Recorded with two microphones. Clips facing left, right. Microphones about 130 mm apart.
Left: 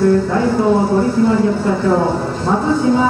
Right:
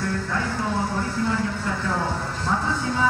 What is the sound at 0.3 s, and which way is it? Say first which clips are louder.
Speech: left 12 dB; 30° left (ahead or behind).